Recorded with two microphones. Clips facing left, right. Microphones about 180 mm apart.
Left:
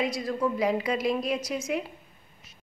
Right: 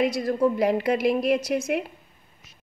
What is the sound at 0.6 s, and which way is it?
A woman's voice, 60° right (ahead or behind).